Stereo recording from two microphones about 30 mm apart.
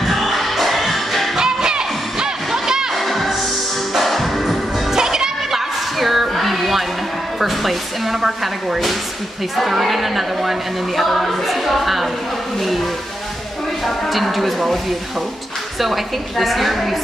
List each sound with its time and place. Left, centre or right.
0.0 s music: centre
1.3 s music: right
2.9 s music: centre
4.9 s music: centre
5.9 s music: centre
7.3 s speech: centre
13.8 s speech: centre